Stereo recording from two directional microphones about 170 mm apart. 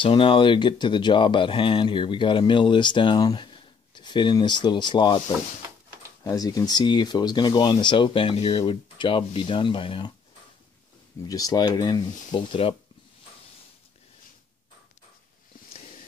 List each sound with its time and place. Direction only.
0.0 s speech: 30° left (ahead or behind)
6.2 s speech: 20° left (ahead or behind)
11.2 s speech: 20° left (ahead or behind)